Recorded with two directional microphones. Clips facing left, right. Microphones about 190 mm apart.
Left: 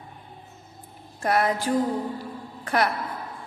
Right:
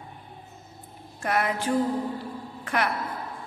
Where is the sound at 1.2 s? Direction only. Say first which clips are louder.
Left 3 dB; 35° left (ahead or behind).